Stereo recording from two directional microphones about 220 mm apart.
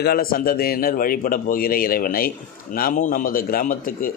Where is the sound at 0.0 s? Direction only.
45° left (ahead or behind).